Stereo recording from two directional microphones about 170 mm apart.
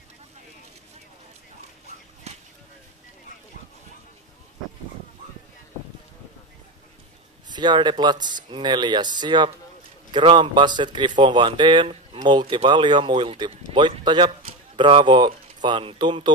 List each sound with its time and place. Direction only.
7.4 s speech: 25° right (ahead or behind)